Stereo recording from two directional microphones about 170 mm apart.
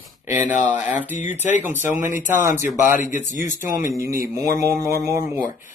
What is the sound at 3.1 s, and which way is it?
Speech, 50° left (ahead or behind).